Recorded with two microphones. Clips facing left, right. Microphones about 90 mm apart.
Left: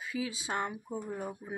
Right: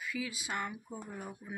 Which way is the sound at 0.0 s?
30° left (ahead or behind).